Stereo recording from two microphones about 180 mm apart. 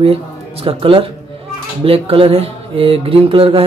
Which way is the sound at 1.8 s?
30° right (ahead or behind).